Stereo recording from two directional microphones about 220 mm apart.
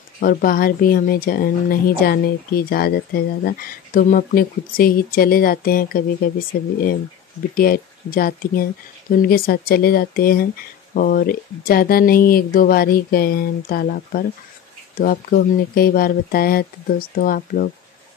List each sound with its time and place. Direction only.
0.2 s speech: 40° left (ahead or behind)
7.5 s speech: 40° left (ahead or behind)